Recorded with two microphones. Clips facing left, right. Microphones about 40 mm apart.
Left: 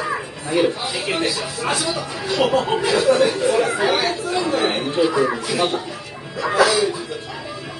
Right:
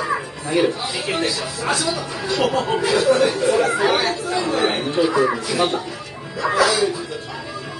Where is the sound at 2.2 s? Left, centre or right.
Centre.